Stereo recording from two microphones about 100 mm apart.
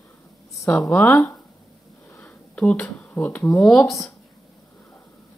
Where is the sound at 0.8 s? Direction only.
15° left (ahead or behind).